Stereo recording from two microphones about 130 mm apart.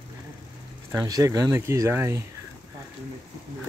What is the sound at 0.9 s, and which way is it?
Speech, 30° right (ahead or behind).